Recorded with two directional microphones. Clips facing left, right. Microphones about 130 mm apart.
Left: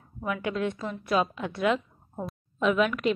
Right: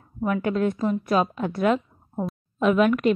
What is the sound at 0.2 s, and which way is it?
A woman's voice, 45° right (ahead or behind).